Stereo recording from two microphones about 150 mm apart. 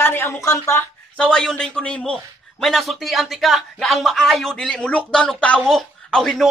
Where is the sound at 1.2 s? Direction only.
5° left (ahead or behind).